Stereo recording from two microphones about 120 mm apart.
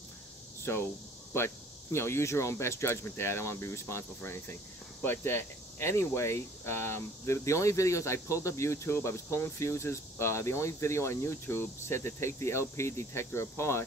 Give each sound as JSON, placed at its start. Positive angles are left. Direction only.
{"t": 1.3, "sound": "speech", "side_deg": 20}